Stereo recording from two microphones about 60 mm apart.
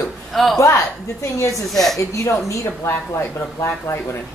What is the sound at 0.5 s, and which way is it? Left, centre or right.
A woman's voice, left.